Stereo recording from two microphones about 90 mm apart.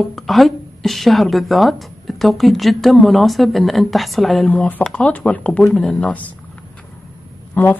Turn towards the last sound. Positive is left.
turn(degrees=25)  # may be behind; listen again after turning